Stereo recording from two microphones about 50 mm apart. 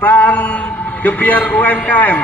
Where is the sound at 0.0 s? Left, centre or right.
Left.